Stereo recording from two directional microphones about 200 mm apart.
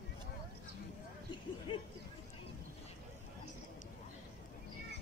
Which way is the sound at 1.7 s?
25° left (ahead or behind).